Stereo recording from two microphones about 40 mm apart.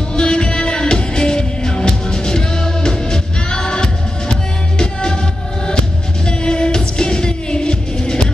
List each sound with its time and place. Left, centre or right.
0.1 s music: left
6.2 s music: left